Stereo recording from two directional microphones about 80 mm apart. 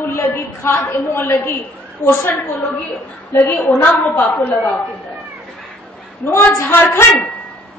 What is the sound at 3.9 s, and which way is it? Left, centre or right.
Speech, left.